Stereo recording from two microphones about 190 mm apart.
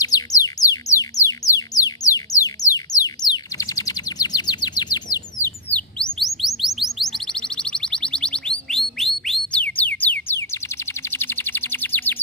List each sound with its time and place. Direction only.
0.0 s music: 20° left (ahead or behind)
5.7 s chirp: 5° left (ahead or behind)